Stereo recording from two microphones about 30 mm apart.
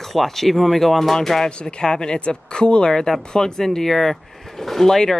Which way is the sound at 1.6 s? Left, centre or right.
Left.